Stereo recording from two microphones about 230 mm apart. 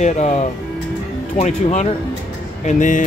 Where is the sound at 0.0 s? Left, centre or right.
Left.